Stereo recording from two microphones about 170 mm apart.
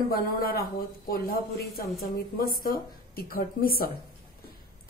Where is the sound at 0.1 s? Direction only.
60° left (ahead or behind).